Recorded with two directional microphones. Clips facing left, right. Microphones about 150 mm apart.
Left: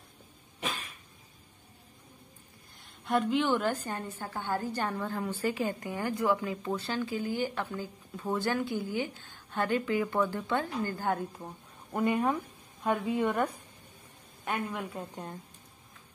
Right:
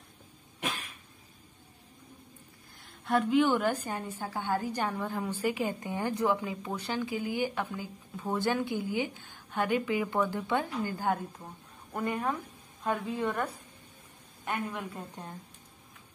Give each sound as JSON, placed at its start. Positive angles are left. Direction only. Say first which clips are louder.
{"t": 3.1, "sound": "a woman's voice", "louder": "right 2 dB", "side_deg": 0}
{"t": 11.9, "sound": "a woman's voice", "louder": "left 4 dB", "side_deg": 10}
{"t": 14.5, "sound": "a woman's voice", "louder": "left 1 dB", "side_deg": 15}